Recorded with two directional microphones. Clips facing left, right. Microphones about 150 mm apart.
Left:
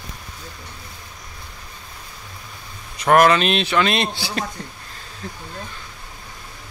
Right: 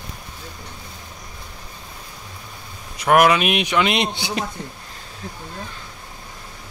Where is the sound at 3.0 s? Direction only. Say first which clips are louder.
Left 1 dB; 10° right (ahead or behind).